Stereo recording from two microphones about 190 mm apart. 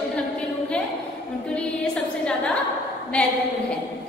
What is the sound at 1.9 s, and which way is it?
Speech, 5° left (ahead or behind).